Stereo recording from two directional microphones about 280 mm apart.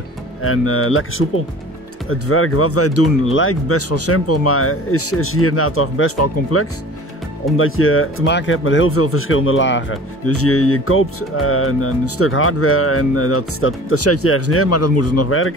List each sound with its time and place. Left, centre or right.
0.4 s speech: left